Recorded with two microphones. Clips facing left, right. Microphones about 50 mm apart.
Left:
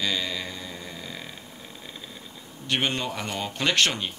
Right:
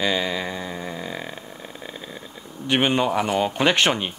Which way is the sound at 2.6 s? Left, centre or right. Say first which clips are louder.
Right 7 dB; centre.